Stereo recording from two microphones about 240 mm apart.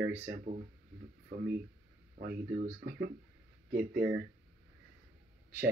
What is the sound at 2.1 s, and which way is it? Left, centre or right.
Speech, right.